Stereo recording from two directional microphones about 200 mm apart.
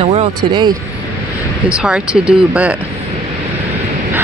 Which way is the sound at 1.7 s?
5° right (ahead or behind).